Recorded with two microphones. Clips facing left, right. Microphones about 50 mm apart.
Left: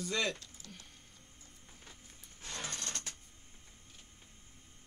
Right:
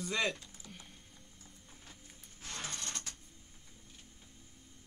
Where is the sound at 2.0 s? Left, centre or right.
Centre.